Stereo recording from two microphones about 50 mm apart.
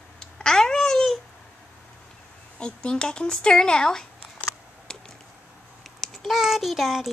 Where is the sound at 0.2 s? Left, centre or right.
Centre.